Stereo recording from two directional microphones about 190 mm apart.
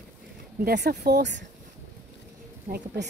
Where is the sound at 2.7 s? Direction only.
55° right (ahead or behind).